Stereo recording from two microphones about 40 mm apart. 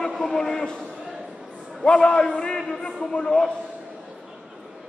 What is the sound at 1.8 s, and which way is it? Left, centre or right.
A man's voice, left.